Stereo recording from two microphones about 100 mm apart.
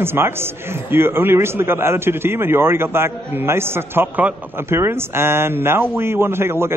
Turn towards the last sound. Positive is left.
turn(degrees=-25)  # may be behind; listen again after turning